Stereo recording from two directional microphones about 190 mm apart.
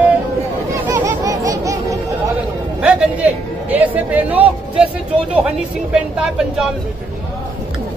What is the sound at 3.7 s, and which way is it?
Speech, 10° right (ahead or behind).